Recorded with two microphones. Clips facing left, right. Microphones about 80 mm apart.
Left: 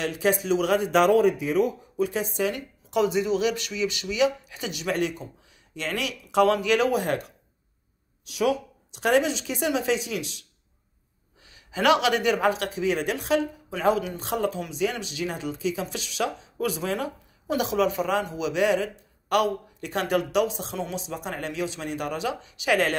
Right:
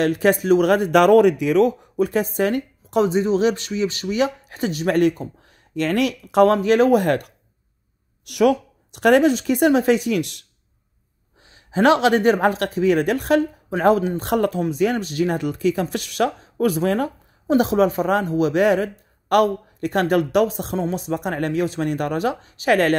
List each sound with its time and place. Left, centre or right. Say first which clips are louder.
0.0 s a woman's voice: right 7 dB; right
2.0 s a woman's voice: right 5 dB; right
11.4 s a woman's voice: right 5 dB; right